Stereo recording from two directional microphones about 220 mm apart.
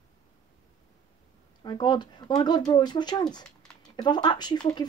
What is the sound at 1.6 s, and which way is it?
Speech, 20° left (ahead or behind).